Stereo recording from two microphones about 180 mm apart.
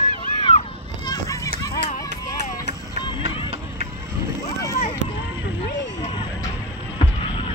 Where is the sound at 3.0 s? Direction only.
25° left (ahead or behind).